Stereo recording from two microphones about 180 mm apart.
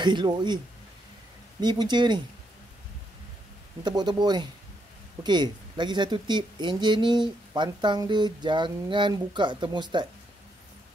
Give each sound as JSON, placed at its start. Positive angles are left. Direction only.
{"t": 0.0, "sound": "speech", "side_deg": -25}
{"t": 1.6, "sound": "speech", "side_deg": -25}
{"t": 3.8, "sound": "speech", "side_deg": -25}